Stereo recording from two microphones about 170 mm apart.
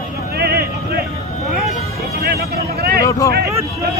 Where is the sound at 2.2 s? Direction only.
70° right (ahead or behind).